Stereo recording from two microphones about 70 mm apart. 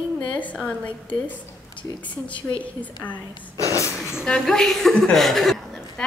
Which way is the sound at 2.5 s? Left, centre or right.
Left.